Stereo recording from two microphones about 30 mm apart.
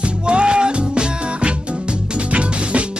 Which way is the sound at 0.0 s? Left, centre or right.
Right.